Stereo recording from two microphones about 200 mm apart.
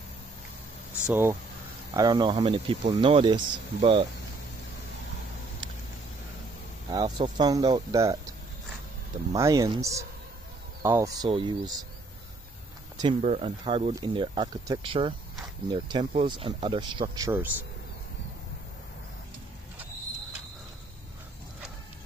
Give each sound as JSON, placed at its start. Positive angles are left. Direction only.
{"t": 1.0, "sound": "speech", "side_deg": -10}
{"t": 2.0, "sound": "speech", "side_deg": -20}
{"t": 6.9, "sound": "speech", "side_deg": -20}
{"t": 13.2, "sound": "speech", "side_deg": -35}
{"t": 13.7, "sound": "speech", "side_deg": -25}